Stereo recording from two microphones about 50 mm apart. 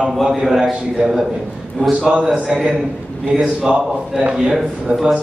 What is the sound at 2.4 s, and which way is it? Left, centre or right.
Speech, centre.